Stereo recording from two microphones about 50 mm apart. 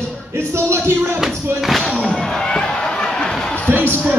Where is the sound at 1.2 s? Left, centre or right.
Centre.